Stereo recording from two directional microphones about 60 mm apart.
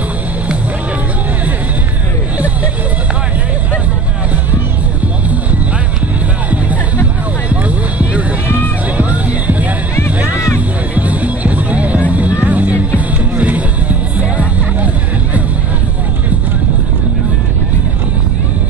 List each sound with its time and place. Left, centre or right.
2.3 s hubbub: right
7.6 s music: right